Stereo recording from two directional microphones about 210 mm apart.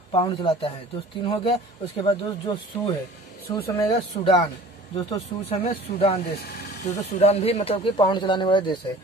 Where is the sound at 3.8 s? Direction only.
20° left (ahead or behind).